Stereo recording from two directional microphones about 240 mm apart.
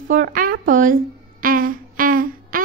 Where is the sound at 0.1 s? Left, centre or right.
Right.